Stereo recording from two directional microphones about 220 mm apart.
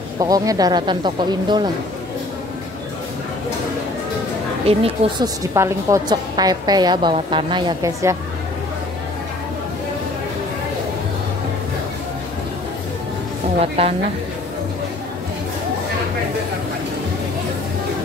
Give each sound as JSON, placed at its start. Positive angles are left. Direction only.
{"t": 0.2, "sound": "a woman's voice", "side_deg": -15}
{"t": 4.6, "sound": "a woman's voice", "side_deg": -25}
{"t": 5.5, "sound": "a woman's voice", "side_deg": -15}
{"t": 13.6, "sound": "a woman's voice", "side_deg": -30}